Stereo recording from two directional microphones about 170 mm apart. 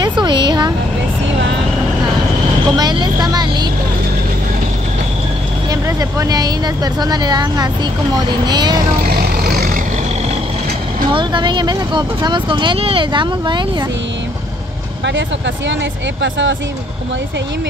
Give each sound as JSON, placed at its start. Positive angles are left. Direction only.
{"t": 0.0, "sound": "a sound", "side_deg": -25}
{"t": 2.8, "sound": "vehicle", "side_deg": -25}
{"t": 5.7, "sound": "speech", "side_deg": -20}
{"t": 9.0, "sound": "vehicle", "side_deg": -65}
{"t": 11.1, "sound": "speech", "side_deg": -30}
{"t": 16.2, "sound": "speech", "side_deg": -90}